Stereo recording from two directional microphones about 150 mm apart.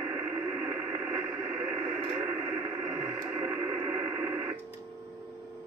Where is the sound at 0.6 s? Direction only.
10° right (ahead or behind).